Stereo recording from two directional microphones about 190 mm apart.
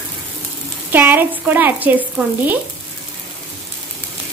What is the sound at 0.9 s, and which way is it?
Speech, 10° right (ahead or behind).